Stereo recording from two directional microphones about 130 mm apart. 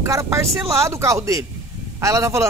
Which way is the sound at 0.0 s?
25° right (ahead or behind).